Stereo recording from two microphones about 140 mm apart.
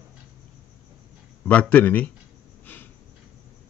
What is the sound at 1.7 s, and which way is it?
Speech, 10° left (ahead or behind).